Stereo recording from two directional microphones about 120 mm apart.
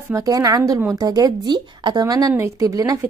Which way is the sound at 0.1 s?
30° right (ahead or behind).